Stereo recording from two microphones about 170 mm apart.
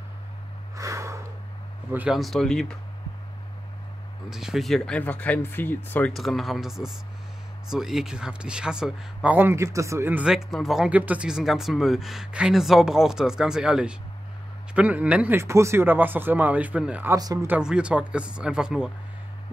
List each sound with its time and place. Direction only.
0.7 s snort: 20° right (ahead or behind)
1.9 s speech: 5° right (ahead or behind)
4.3 s speech: 5° right (ahead or behind)
6.1 s speech: centre (ahead or behind)
17.2 s speech: 20° right (ahead or behind)
17.5 s speech: 5° right (ahead or behind)